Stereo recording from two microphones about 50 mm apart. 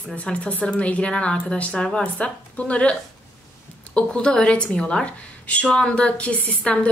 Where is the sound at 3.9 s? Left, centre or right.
Centre.